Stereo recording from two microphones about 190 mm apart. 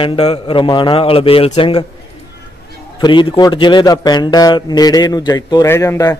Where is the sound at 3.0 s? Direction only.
25° left (ahead or behind).